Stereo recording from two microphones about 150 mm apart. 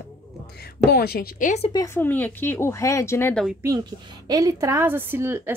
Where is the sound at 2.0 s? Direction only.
10° left (ahead or behind).